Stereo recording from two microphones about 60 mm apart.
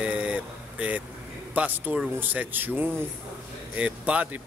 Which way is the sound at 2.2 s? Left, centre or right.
Right.